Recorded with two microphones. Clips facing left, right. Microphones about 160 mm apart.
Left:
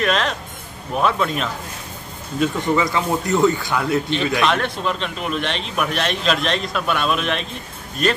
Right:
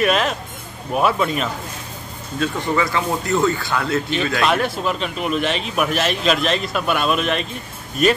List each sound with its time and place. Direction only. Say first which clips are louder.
0.0 s a man's voice: right 2 dB; 5° right (ahead or behind)
2.3 s speech: left 2 dB; 20° left (ahead or behind)
4.4 s a man's voice: right 1 dB; 5° right (ahead or behind)